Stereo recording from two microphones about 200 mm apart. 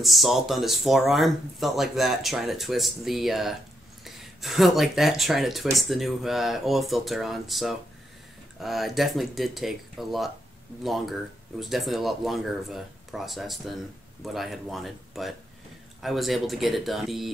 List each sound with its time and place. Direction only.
0.0 s speech: centre (ahead or behind)